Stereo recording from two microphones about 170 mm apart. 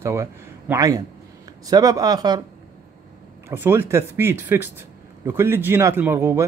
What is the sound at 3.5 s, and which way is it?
A man's voice, 15° right (ahead or behind).